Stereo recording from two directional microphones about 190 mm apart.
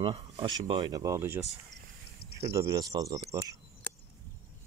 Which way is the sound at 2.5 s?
20° right (ahead or behind).